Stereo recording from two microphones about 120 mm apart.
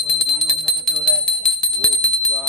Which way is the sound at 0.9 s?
10° left (ahead or behind).